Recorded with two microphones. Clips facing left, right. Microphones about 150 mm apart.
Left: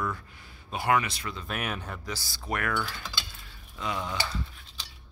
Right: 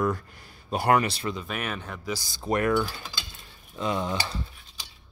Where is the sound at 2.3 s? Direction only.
25° right (ahead or behind).